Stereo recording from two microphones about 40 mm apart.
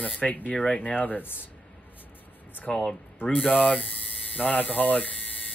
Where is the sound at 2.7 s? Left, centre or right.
Centre.